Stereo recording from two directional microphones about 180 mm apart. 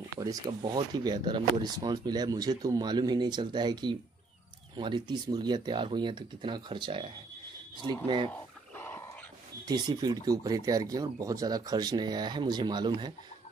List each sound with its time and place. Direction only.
0.1 s speech: 20° right (ahead or behind)
8.3 s wild animals: 10° left (ahead or behind)
9.7 s speech: 20° right (ahead or behind)